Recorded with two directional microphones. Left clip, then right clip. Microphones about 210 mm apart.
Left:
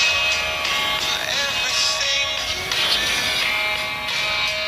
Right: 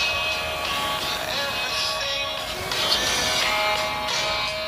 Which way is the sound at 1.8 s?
5° right (ahead or behind).